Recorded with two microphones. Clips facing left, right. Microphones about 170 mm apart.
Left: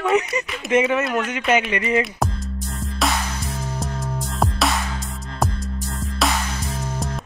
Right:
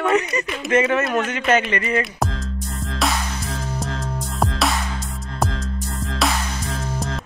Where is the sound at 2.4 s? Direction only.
Centre (ahead or behind).